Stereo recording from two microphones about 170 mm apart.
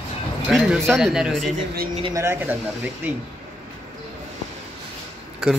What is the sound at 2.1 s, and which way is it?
Speech, 15° right (ahead or behind).